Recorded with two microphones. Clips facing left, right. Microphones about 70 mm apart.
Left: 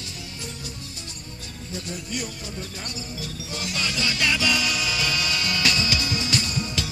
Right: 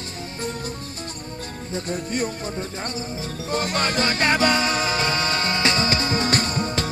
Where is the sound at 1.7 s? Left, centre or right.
Right.